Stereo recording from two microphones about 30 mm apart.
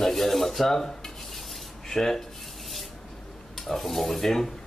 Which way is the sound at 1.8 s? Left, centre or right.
Centre.